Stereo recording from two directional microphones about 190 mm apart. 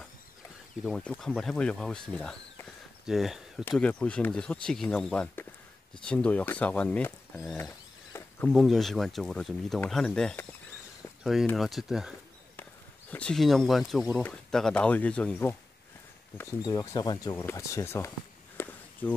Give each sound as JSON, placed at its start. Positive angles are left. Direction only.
{"t": 0.8, "sound": "speech", "side_deg": 5}
{"t": 7.5, "sound": "a sound", "side_deg": 15}
{"t": 8.5, "sound": "speech", "side_deg": 0}
{"t": 11.5, "sound": "speech", "side_deg": 0}
{"t": 13.1, "sound": "speech", "side_deg": 5}
{"t": 16.3, "sound": "speech", "side_deg": 15}
{"t": 18.6, "sound": "walk", "side_deg": 10}